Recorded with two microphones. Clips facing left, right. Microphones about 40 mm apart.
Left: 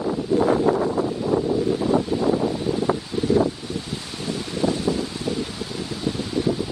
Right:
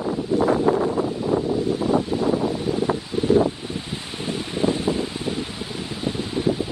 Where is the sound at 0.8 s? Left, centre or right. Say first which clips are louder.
Even; centre.